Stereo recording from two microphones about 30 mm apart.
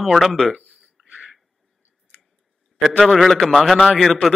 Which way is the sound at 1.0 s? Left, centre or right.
Centre.